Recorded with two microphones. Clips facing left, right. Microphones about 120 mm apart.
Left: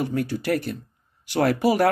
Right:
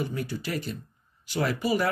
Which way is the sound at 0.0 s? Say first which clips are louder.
Left 6 dB; 65° left (ahead or behind).